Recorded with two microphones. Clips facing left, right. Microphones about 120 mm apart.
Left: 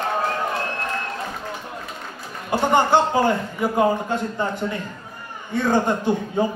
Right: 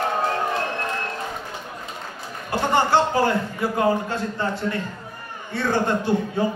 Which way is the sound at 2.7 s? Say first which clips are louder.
Left 1 dB; 20° left (ahead or behind).